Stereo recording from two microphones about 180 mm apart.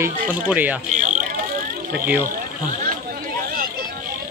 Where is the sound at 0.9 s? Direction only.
40° right (ahead or behind).